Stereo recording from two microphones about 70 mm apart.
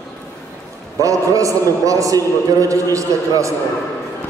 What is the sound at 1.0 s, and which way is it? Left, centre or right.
A man's voice, right.